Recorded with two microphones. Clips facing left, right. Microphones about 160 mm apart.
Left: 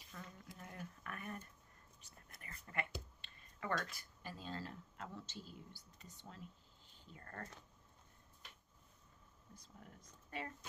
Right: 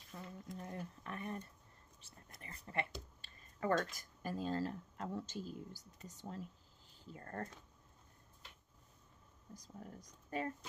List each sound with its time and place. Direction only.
0.1 s a sound: 25° right (ahead or behind)
3.2 s speech: 40° right (ahead or behind)
9.5 s speech: 40° right (ahead or behind)